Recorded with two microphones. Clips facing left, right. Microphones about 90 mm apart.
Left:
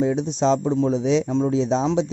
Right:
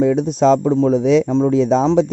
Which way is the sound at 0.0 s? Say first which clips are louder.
Right 6 dB; 50° right (ahead or behind).